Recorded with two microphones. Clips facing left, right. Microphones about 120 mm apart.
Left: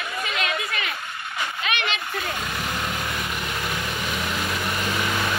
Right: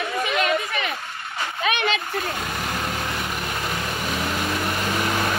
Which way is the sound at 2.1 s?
35° right (ahead or behind).